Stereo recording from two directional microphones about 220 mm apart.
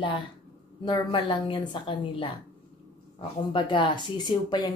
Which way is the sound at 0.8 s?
20° left (ahead or behind).